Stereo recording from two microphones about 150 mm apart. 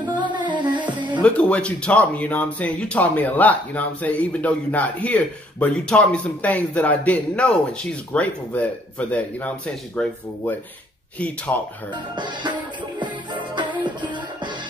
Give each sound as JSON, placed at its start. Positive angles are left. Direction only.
{"t": 0.0, "sound": "music", "side_deg": -30}
{"t": 1.2, "sound": "speech", "side_deg": 10}
{"t": 11.1, "sound": "speech", "side_deg": 10}
{"t": 11.9, "sound": "speech", "side_deg": -30}
{"t": 13.0, "sound": "music", "side_deg": -30}